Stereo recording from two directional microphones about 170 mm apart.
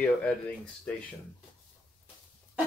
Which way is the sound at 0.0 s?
10° left (ahead or behind).